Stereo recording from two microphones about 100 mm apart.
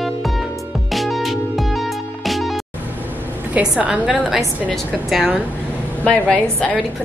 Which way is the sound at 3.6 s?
10° right (ahead or behind).